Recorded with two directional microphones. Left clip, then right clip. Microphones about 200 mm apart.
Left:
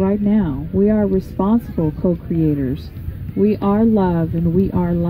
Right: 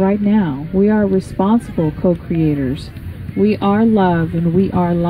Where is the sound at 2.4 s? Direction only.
20° right (ahead or behind).